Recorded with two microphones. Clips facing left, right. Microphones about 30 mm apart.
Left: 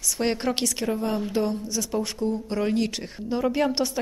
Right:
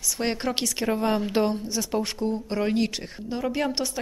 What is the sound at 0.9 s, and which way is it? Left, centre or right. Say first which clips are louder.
Speech: right 2 dB; right.